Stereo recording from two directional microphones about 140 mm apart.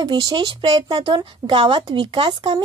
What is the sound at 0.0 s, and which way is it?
Speech, 30° right (ahead or behind).